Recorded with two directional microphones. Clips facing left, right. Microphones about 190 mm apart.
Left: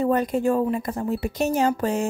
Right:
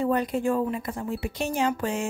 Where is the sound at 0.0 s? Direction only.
45° left (ahead or behind).